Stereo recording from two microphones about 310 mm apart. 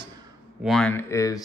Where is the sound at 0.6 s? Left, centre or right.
Centre.